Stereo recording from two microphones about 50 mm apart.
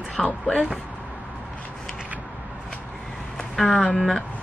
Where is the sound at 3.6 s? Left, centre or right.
Centre.